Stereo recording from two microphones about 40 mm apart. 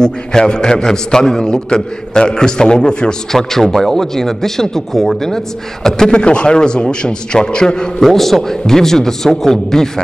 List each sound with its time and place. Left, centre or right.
0.0 s a man's voice: centre
3.3 s a man's voice: centre
8.0 s a man's voice: centre